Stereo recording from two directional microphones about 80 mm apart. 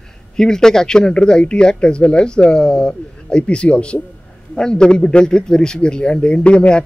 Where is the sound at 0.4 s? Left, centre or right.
Centre.